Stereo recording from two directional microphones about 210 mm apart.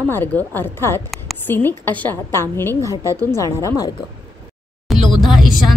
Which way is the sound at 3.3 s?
15° left (ahead or behind).